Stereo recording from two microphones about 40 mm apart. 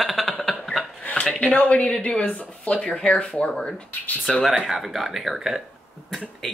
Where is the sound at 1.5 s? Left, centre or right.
Left.